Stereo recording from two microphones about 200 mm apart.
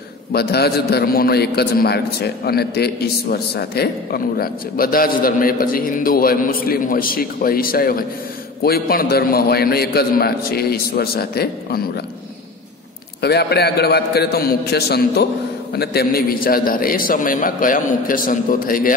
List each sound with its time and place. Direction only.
0.3 s a man's voice: 50° left (ahead or behind)
13.2 s a man's voice: 55° left (ahead or behind)